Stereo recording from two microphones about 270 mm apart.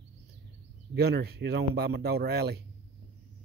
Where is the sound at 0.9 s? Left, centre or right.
Right.